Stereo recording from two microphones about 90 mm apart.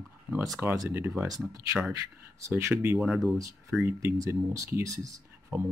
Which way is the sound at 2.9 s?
5° right (ahead or behind).